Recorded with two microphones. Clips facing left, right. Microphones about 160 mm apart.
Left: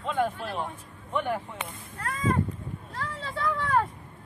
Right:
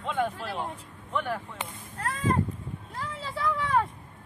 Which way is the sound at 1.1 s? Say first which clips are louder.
Left 2 dB; 15° left (ahead or behind).